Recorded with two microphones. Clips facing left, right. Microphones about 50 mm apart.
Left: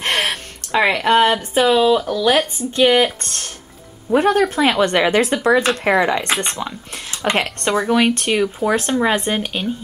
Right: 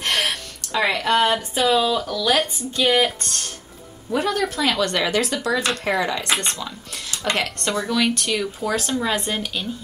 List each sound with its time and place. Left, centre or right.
0.0 s gasp: left
0.7 s speech: left
4.1 s speech: left